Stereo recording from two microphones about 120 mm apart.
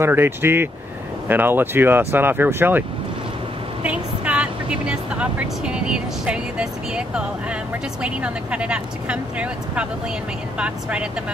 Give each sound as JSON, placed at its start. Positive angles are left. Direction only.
{"t": 0.0, "sound": "speech", "side_deg": -20}
{"t": 3.8, "sound": "speech", "side_deg": -10}